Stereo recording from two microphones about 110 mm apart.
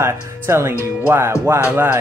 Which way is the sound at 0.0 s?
25° right (ahead or behind).